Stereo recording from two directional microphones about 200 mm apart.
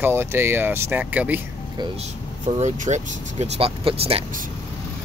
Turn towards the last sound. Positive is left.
turn(degrees=-30)  # may be behind; listen again after turning